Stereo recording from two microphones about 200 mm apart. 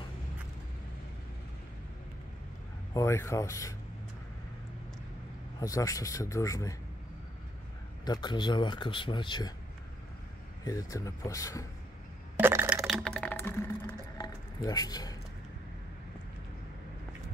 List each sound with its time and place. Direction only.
2.9 s speech: 15° left (ahead or behind)
5.6 s speech: 15° left (ahead or behind)
8.0 s speech: 20° left (ahead or behind)
10.6 s speech: 15° left (ahead or behind)
12.4 s coin: 10° right (ahead or behind)
12.8 s a sound: 5° left (ahead or behind); by 15.1 s 20° left (ahead or behind)